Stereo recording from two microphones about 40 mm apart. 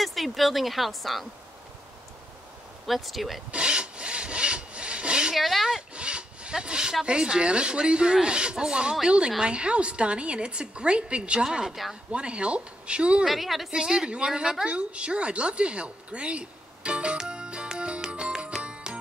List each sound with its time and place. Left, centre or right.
0.0 s speech: centre
2.9 s a woman's voice: centre
3.5 s wood: right
5.3 s a sound: centre
5.8 s rub: right
7.1 s a woman's voice: right
11.4 s a woman's voice: centre
12.1 s a woman's voice: right
13.2 s a woman's voice: centre
14.0 s a woman's voice: right
14.7 s a sound: right
18.6 s music: right